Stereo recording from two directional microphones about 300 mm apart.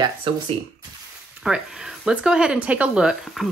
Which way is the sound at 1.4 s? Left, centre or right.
Centre.